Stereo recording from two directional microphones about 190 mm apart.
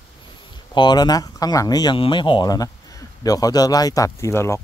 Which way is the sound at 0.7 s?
25° left (ahead or behind).